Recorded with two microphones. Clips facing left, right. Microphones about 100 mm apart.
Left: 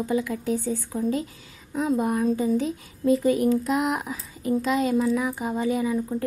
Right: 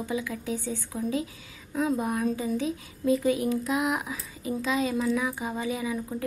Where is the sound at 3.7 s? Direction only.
Centre (ahead or behind).